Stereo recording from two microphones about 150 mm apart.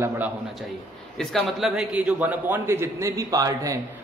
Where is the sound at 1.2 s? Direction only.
Centre (ahead or behind); by 3.8 s 20° right (ahead or behind).